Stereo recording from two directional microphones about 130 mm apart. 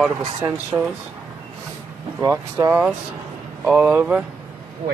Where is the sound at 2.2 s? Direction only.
20° right (ahead or behind).